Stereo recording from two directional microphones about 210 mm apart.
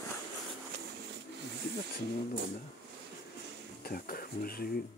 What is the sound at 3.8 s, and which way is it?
Speech, 45° left (ahead or behind).